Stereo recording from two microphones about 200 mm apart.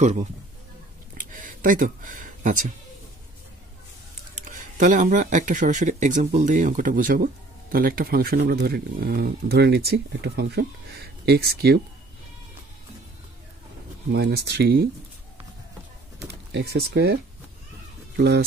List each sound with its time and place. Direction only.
0.0 s speech: 35° right (ahead or behind)
1.1 s a sound: 40° right (ahead or behind)
4.5 s speech: 40° right (ahead or behind)
14.1 s speech: 55° right (ahead or behind)
16.3 s speech: 55° right (ahead or behind)